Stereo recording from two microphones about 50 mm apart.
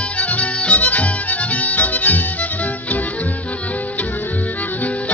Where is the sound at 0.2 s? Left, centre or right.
Left.